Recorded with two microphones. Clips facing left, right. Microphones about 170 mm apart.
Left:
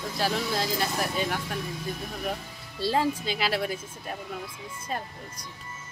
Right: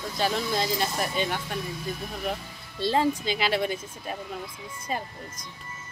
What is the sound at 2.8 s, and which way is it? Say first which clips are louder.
Speech: right 2 dB; 5° left (ahead or behind).